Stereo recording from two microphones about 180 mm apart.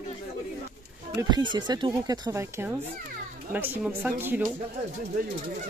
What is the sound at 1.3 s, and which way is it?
Speech, 25° right (ahead or behind).